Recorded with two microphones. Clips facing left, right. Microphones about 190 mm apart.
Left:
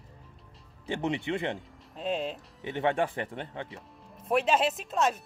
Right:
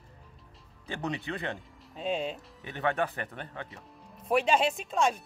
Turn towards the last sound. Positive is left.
turn(degrees=0)  # may be behind; listen again after turning